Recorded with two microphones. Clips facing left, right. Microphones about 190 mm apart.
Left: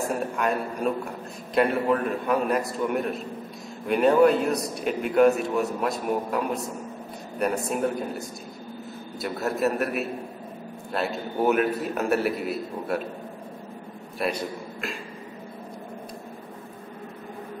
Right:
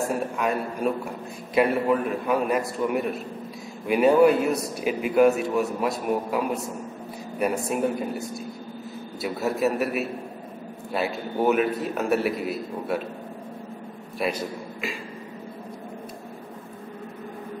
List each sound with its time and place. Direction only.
0.1 s a man's voice: centre (ahead or behind)
14.1 s a man's voice: centre (ahead or behind)